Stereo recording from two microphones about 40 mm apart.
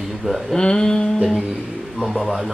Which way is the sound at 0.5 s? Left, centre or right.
Centre.